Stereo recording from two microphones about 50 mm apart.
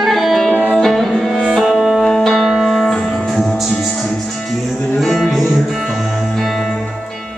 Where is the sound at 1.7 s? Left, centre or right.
Centre.